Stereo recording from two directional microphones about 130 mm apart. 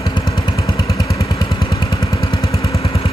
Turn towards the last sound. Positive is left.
turn(degrees=45)  # may be behind; listen again after turning